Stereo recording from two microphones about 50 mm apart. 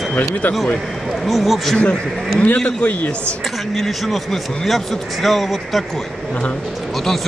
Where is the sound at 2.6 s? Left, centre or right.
Left.